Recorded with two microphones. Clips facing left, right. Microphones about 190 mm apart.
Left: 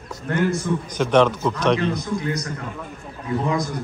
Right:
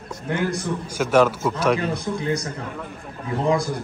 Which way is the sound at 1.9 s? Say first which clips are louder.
Even; 30° right (ahead or behind).